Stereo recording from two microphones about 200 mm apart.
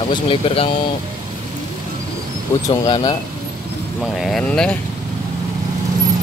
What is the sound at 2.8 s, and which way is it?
Speech, 20° left (ahead or behind).